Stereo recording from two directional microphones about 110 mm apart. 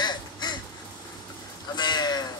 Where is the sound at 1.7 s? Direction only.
40° left (ahead or behind).